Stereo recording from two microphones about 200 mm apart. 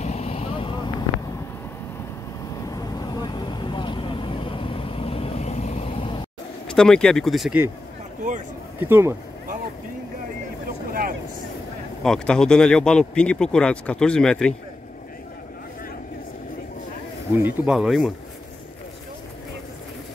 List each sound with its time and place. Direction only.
0.0 s vehicle: 30° left (ahead or behind)
2.7 s vehicle: 20° left (ahead or behind)
6.7 s speech: 5° left (ahead or behind)
8.7 s speech: 10° right (ahead or behind)
10.9 s vehicle: 45° right (ahead or behind)
12.0 s speech: 5° left (ahead or behind)
17.4 s speech: 5° right (ahead or behind)